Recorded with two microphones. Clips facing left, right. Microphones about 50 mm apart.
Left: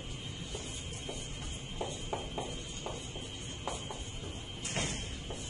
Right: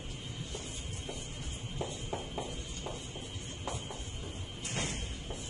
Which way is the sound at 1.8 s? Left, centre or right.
Centre.